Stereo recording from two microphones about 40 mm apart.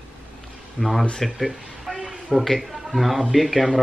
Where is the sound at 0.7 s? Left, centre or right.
Centre.